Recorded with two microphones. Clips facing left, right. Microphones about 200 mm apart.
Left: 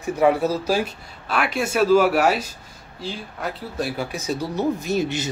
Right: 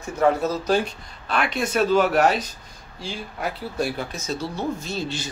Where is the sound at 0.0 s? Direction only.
10° left (ahead or behind).